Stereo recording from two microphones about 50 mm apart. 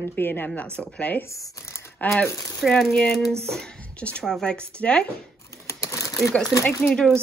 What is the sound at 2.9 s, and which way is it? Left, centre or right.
Speech, centre.